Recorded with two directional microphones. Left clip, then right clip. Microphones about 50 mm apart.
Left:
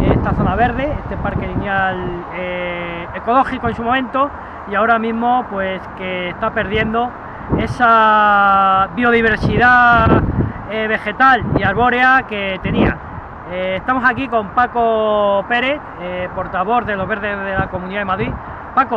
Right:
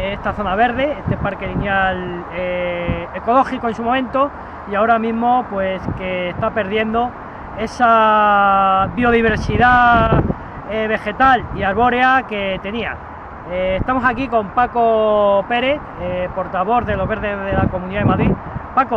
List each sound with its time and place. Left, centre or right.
0.0 s speech: right
3.3 s speech: right
10.7 s speech: right
16.0 s speech: centre